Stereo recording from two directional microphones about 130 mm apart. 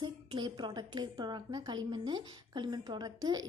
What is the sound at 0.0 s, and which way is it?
A woman's voice, 35° right (ahead or behind).